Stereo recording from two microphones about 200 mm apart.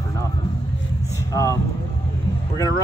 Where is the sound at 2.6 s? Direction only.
15° left (ahead or behind).